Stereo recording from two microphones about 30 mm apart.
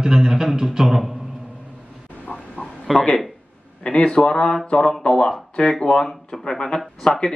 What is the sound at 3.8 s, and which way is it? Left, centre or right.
Speech, left.